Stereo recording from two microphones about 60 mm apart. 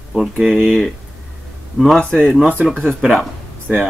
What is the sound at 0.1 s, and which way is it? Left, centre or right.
Speech, centre.